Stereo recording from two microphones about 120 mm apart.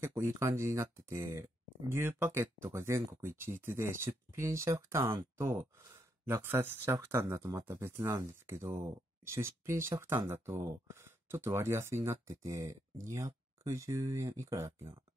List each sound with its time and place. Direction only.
0.0 s speech: 25° right (ahead or behind)